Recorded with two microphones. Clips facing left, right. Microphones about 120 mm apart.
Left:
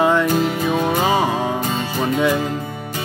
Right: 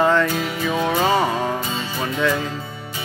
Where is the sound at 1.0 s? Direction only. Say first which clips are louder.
Left 1 dB; 15° left (ahead or behind).